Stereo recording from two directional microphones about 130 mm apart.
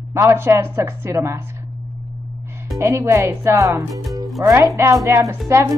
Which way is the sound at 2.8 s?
20° right (ahead or behind).